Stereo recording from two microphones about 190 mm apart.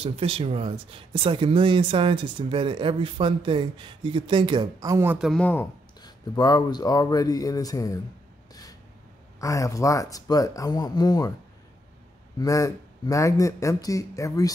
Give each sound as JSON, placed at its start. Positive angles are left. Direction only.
{"t": 0.0, "sound": "speech", "side_deg": -30}
{"t": 5.4, "sound": "speech", "side_deg": 10}
{"t": 5.9, "sound": "speech", "side_deg": 20}
{"t": 9.4, "sound": "speech", "side_deg": 15}
{"t": 12.4, "sound": "speech", "side_deg": 15}